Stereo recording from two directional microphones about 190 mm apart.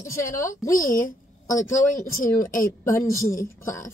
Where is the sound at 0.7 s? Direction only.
15° left (ahead or behind).